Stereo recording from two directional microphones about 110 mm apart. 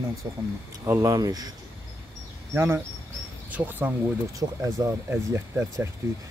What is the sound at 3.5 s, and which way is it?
Speech, 15° right (ahead or behind).